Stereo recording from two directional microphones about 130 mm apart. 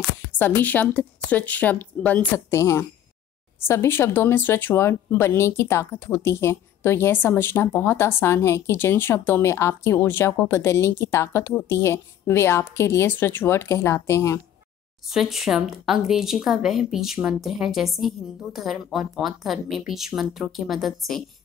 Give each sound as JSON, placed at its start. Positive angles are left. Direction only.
{"t": 0.4, "sound": "a woman's voice", "side_deg": 15}
{"t": 15.0, "sound": "speech", "side_deg": 0}